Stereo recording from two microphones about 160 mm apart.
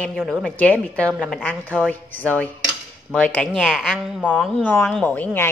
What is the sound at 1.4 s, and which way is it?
Speech, 10° left (ahead or behind).